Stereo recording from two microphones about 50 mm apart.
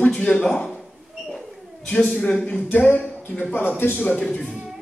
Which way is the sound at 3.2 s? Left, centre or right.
Left.